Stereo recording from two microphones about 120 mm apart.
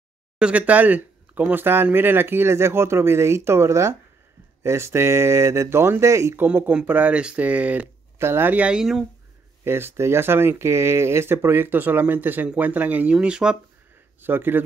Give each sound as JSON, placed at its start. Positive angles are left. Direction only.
{"t": 0.4, "sound": "speech", "side_deg": -10}
{"t": 9.7, "sound": "speech", "side_deg": -20}
{"t": 14.2, "sound": "speech", "side_deg": -15}